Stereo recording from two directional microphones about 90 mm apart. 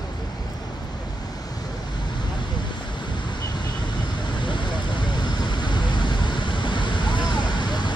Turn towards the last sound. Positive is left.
turn(degrees=55)  # may be behind; listen again after turning